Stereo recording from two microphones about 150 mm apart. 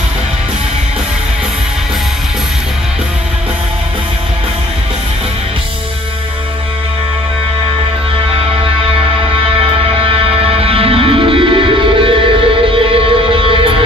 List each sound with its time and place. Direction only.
10.1 s music: 40° right (ahead or behind)